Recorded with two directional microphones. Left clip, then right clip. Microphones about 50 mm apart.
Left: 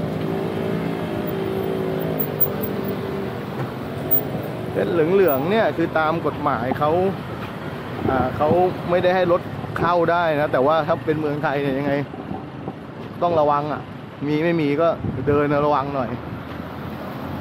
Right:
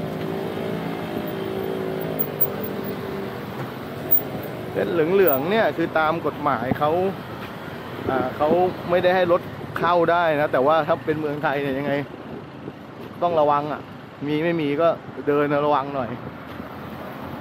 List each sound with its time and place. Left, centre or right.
0.4 s vehicle: right
4.7 s speech: right
13.2 s speech: centre